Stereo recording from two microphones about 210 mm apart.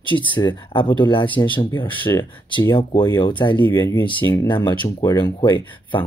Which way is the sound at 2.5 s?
25° left (ahead or behind).